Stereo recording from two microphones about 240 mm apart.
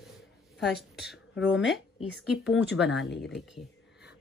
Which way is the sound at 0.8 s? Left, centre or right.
Centre.